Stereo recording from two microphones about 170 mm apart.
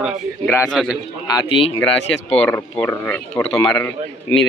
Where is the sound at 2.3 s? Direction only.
10° left (ahead or behind).